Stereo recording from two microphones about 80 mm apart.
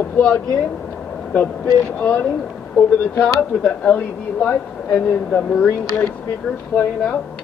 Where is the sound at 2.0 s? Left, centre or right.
Centre.